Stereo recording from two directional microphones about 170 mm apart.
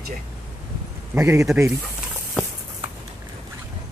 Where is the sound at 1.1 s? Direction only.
15° right (ahead or behind).